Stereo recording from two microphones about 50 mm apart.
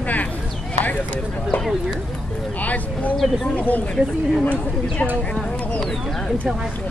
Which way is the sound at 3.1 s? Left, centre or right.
Centre.